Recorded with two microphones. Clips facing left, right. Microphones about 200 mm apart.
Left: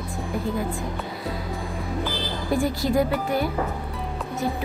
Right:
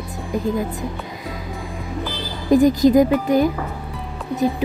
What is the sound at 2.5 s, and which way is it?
Speech, 20° right (ahead or behind).